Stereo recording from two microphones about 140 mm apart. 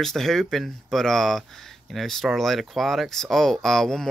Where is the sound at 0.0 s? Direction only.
Centre (ahead or behind).